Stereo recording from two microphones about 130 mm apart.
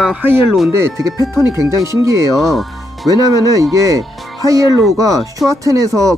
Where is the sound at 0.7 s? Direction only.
25° right (ahead or behind).